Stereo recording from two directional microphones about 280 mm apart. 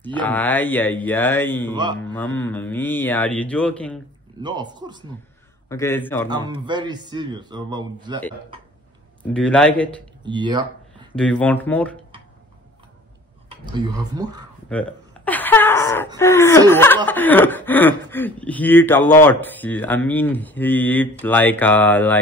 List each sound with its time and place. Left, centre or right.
0.2 s chuckle: centre
2.1 s speech: centre
4.4 s a man's voice: centre
5.7 s chuckle: centre
6.2 s a man's voice: centre
9.2 s speech: centre
10.2 s a man's voice: centre
11.1 s speech: centre
13.5 s speech: centre
14.7 s a sound: centre
16.2 s chuckle: centre